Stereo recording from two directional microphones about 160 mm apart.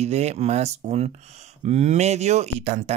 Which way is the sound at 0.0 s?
45° right (ahead or behind).